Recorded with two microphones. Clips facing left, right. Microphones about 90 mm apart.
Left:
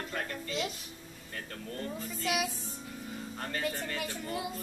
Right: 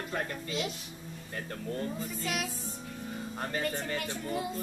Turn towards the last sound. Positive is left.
turn(degrees=5)  # may be behind; listen again after turning